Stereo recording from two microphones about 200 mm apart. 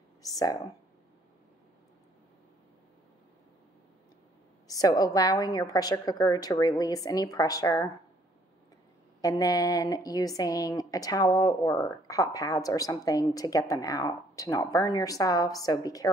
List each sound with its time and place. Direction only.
0.2 s speech: 20° left (ahead or behind)
4.6 s a woman's voice: 20° left (ahead or behind)
9.2 s a woman's voice: 15° left (ahead or behind)